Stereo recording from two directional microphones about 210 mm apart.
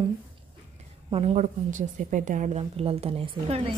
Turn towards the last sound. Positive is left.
turn(degrees=-25)  # may be behind; listen again after turning